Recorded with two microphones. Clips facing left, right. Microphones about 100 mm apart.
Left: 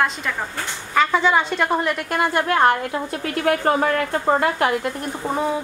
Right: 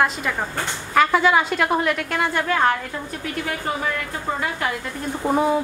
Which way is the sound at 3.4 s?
55° left (ahead or behind).